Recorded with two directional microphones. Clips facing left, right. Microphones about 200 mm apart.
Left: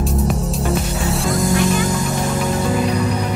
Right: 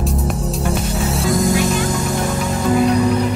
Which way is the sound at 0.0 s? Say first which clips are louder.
Left 1 dB; centre (ahead or behind).